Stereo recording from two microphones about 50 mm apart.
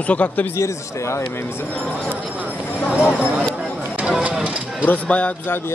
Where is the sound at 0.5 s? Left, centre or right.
Left.